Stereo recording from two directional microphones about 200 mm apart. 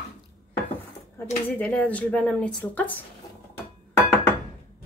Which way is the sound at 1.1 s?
5° left (ahead or behind).